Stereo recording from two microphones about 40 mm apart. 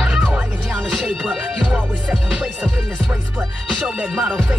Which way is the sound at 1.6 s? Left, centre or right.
Right.